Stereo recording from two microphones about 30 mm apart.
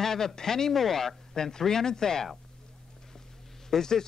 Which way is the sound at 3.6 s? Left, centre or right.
Centre.